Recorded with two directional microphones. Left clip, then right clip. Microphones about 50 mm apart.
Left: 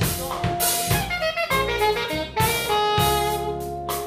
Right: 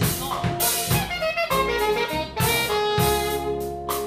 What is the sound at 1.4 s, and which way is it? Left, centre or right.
Music, left.